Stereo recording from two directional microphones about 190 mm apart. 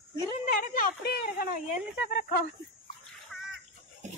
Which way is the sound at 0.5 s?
45° left (ahead or behind).